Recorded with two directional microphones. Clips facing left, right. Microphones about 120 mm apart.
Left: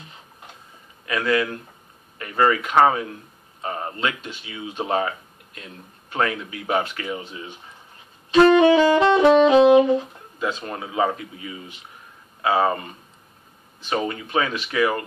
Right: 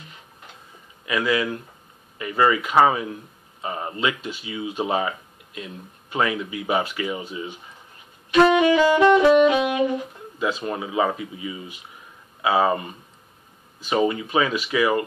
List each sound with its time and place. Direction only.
1.0 s a man's voice: 10° right (ahead or behind)
8.5 s saxophone: 25° left (ahead or behind)
10.7 s speech: 5° right (ahead or behind)
12.4 s speech: 10° right (ahead or behind)